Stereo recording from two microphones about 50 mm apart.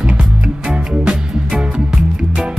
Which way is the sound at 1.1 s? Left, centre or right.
Centre.